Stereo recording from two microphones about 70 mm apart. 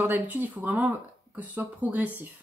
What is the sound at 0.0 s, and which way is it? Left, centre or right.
Speech, right.